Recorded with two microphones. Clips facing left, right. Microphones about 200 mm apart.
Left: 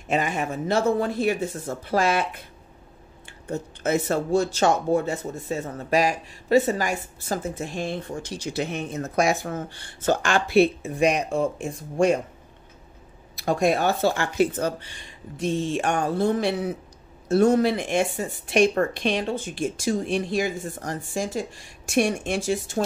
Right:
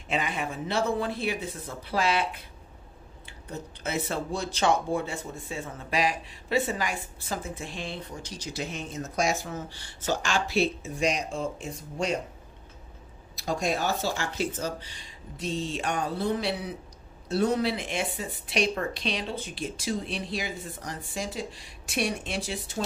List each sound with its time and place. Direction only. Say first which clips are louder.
0.1 s speech: left 5 dB; 45° left (ahead or behind)
3.3 s speech: left 8 dB; 45° left (ahead or behind)
13.4 s speech: left 7 dB; 60° left (ahead or behind)